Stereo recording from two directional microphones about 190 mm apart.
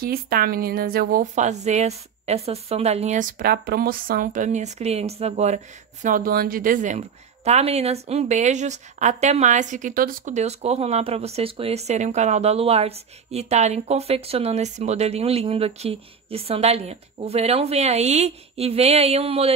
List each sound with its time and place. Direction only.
0.0 s speech: 50° right (ahead or behind); by 5.6 s 35° right (ahead or behind)
6.0 s speech: 45° right (ahead or behind); by 19.5 s 30° right (ahead or behind)